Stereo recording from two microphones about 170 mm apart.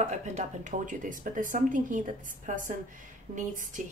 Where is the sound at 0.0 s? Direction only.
45° right (ahead or behind).